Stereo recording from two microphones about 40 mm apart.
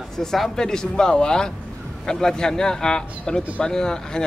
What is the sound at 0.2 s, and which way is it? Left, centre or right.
Speech, centre.